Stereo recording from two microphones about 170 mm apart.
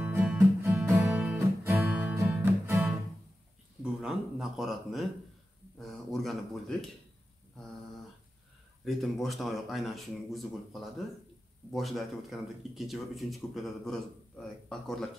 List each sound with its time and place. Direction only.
0.0 s music: 10° right (ahead or behind)
3.8 s a sound: centre (ahead or behind)
5.8 s speech: centre (ahead or behind)
8.8 s speech: centre (ahead or behind)